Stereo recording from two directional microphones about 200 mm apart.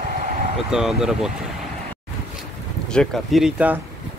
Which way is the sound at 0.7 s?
Centre (ahead or behind).